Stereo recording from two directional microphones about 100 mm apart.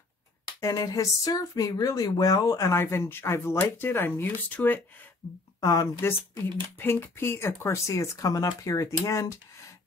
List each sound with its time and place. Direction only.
0.6 s speech: 35° left (ahead or behind); by 4.8 s 15° left (ahead or behind)
5.6 s speech: 35° left (ahead or behind)